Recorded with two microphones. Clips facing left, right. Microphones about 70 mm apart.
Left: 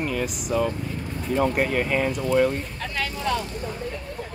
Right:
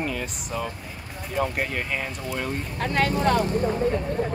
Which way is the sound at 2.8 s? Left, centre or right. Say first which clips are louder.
Right 9 dB; right.